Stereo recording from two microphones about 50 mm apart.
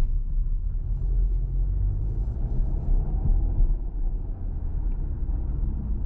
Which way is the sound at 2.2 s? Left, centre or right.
Centre.